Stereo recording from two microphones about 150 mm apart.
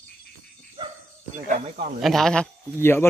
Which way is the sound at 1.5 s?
50° right (ahead or behind).